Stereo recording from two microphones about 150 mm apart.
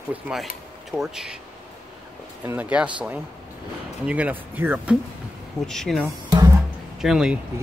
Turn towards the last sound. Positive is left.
turn(degrees=-5)  # may be behind; listen again after turning